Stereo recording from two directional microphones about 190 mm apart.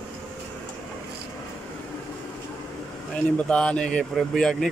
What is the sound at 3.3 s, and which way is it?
Speech, 5° left (ahead or behind).